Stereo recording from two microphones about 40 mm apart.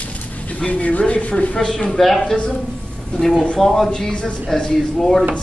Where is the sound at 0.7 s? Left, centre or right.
Left.